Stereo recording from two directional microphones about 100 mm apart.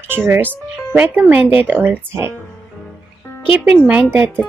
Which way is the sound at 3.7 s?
15° right (ahead or behind).